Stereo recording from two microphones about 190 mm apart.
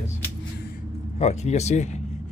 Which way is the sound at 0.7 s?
35° left (ahead or behind).